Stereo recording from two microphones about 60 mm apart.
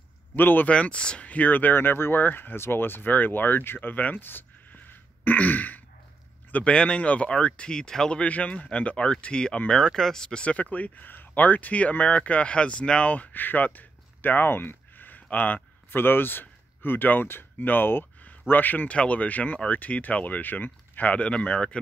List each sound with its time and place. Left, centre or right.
0.4 s speech: left
0.7 s speech: centre
13.1 s speech: left